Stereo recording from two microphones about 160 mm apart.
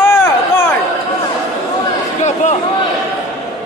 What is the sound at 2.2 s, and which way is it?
Speech, 45° left (ahead or behind).